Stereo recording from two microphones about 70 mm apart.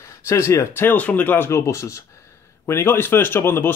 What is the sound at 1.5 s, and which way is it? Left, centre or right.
Speech, left.